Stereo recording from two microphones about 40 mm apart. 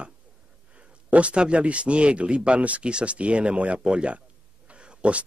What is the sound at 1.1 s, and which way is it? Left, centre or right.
A man's voice, right.